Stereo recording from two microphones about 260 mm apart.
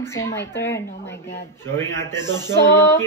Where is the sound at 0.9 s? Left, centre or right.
Left.